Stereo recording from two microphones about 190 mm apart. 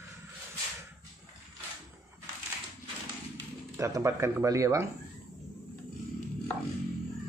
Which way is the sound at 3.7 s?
15° right (ahead or behind).